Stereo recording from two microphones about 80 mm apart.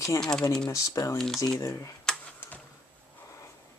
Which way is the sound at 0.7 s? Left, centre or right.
Left.